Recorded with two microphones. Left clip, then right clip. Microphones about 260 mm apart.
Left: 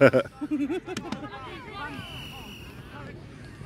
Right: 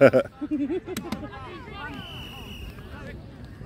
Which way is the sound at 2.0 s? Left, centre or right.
Right.